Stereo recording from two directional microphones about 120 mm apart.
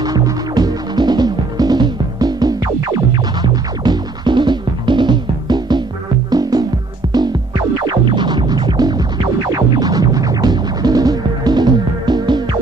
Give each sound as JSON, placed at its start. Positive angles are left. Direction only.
{"t": 0.0, "sound": "music", "side_deg": -30}
{"t": 7.8, "sound": "music", "side_deg": -40}